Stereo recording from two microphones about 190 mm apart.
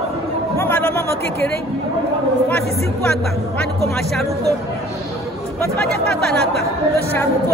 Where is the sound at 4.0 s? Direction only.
Centre (ahead or behind).